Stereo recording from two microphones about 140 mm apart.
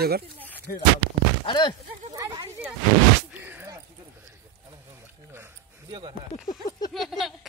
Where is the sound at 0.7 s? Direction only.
85° left.